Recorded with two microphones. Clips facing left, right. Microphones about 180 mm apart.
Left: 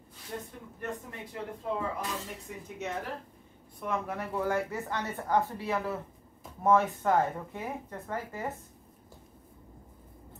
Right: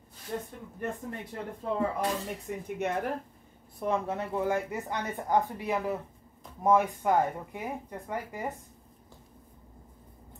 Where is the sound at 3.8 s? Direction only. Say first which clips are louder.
Right 4 dB; 30° right (ahead or behind); by 8.5 s 15° right (ahead or behind).